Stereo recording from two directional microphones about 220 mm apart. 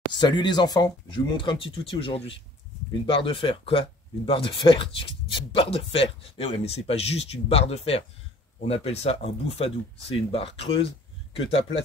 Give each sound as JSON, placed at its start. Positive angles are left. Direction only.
{"t": 0.1, "sound": "speech", "side_deg": 20}